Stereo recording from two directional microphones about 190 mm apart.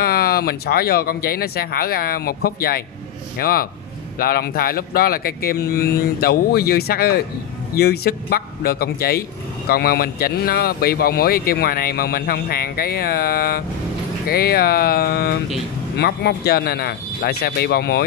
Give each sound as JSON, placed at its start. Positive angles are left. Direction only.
{"t": 0.0, "sound": "speech", "side_deg": 50}